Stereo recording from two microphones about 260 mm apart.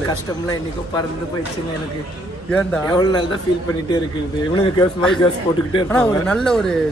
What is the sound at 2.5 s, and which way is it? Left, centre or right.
Speech, centre.